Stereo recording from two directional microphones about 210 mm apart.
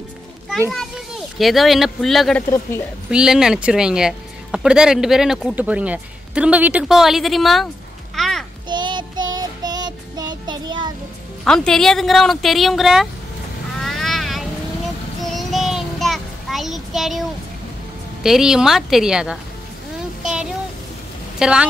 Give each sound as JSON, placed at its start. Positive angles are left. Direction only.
{"t": 0.7, "sound": "speech", "side_deg": 0}
{"t": 8.2, "sound": "a sound", "side_deg": 0}
{"t": 8.6, "sound": "child singing", "side_deg": -20}
{"t": 11.4, "sound": "speech", "side_deg": 5}
{"t": 13.7, "sound": "boat", "side_deg": 0}
{"t": 15.2, "sound": "child singing", "side_deg": 0}
{"t": 18.2, "sound": "speech", "side_deg": 0}
{"t": 20.2, "sound": "a sound", "side_deg": -5}
{"t": 21.4, "sound": "speech", "side_deg": -5}